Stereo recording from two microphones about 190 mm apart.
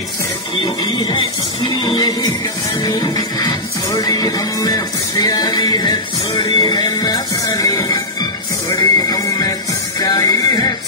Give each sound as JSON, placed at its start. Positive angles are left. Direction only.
{"t": 0.9, "sound": "music", "side_deg": 25}